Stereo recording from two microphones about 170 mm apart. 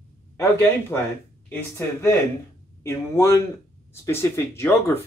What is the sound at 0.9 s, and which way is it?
Speech, 10° left (ahead or behind).